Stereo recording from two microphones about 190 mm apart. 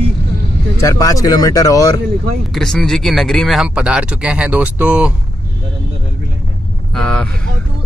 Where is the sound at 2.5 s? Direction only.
Centre (ahead or behind).